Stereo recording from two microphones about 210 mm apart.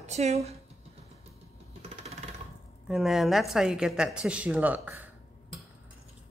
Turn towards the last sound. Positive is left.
turn(degrees=-5)  # may be behind; listen again after turning